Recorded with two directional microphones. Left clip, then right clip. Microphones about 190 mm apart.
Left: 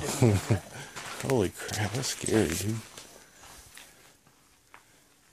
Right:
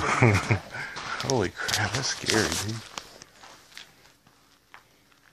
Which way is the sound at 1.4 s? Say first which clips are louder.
Right 5 dB; 40° left (ahead or behind).